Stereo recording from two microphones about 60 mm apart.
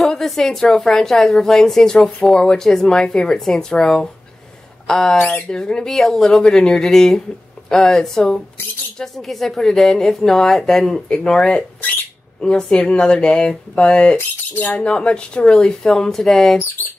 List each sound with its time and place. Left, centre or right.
0.0 s a woman's voice: centre
14.1 s speech: left
14.9 s a woman's voice: centre